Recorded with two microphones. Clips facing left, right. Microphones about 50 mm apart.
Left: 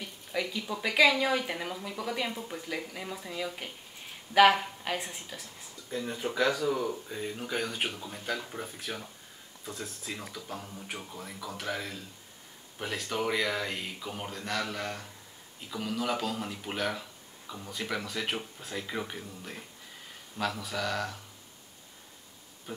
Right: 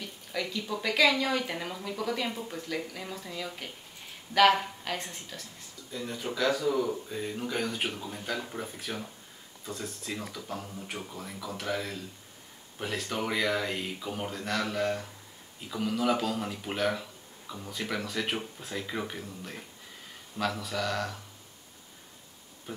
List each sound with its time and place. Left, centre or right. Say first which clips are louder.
0.0 s speech: left 1 dB; centre
6.5 s speech: right 2 dB; centre
22.7 s speech: even; centre